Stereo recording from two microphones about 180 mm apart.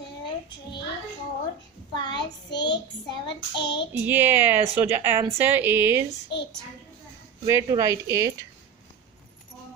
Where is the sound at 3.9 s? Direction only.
10° right (ahead or behind).